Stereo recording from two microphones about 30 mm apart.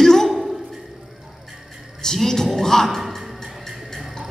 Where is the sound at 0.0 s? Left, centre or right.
Centre.